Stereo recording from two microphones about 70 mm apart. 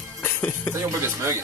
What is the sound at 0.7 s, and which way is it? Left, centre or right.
Speech, right.